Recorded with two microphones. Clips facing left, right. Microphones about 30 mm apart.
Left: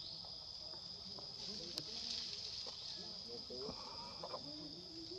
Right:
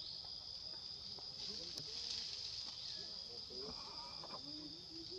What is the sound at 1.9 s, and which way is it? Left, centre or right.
Fire, centre.